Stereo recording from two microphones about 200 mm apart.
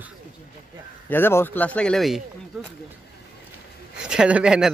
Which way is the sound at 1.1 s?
10° left (ahead or behind).